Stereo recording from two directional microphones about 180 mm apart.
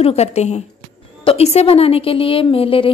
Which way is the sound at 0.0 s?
35° left (ahead or behind).